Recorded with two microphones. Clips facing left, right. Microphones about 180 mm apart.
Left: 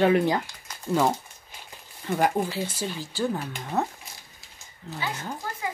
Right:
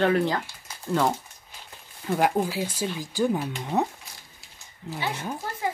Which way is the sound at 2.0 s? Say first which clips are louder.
Right 1 dB; 5° right (ahead or behind).